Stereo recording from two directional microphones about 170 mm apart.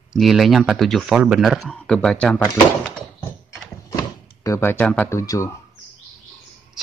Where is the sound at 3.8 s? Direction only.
20° left (ahead or behind).